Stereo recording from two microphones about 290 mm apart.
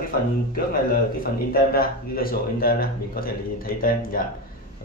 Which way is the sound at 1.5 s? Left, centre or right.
Left.